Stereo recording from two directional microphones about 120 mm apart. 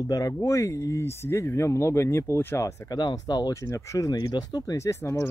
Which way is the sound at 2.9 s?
35° left (ahead or behind).